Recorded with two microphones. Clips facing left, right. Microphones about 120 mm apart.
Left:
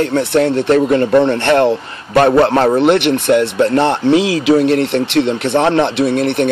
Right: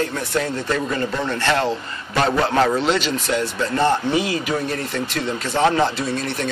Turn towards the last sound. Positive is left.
turn(degrees=60)  # may be behind; listen again after turning